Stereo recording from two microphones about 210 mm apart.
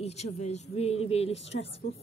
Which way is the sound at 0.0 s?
30° left (ahead or behind).